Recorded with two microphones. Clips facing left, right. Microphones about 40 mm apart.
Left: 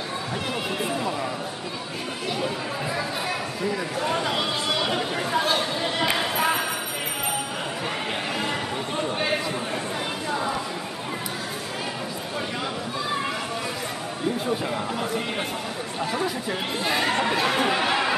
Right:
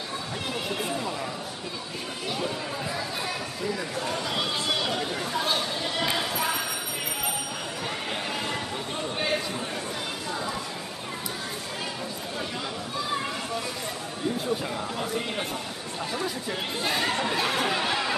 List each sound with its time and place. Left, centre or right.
0.8 s a sound: centre
4.0 s speech: left
4.4 s chatter: centre
4.9 s chatter: left
5.5 s a sound: left
16.0 s speech: centre